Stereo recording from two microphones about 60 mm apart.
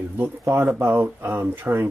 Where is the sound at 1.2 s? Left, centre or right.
Right.